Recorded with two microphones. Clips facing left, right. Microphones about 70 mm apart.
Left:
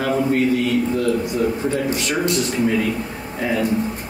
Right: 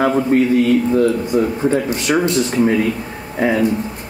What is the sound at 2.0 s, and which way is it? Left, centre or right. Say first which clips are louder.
Speech: right 4 dB; right.